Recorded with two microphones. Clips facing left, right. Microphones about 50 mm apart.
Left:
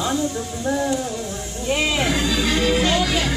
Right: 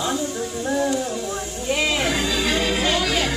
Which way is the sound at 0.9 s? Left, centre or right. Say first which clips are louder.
Even; centre.